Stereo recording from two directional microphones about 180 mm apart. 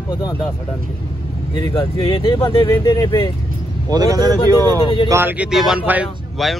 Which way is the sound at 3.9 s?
20° right (ahead or behind).